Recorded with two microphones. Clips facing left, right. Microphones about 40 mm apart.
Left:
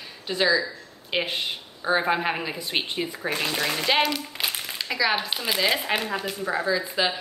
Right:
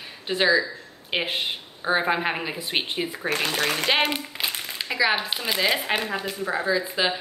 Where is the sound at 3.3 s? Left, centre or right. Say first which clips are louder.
Right 2 dB; right.